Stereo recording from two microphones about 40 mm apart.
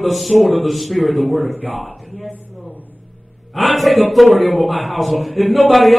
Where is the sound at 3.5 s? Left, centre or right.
Centre.